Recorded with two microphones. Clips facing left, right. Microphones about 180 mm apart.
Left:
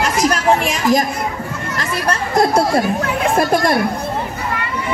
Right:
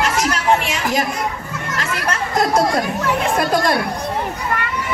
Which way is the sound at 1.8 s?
30° left (ahead or behind).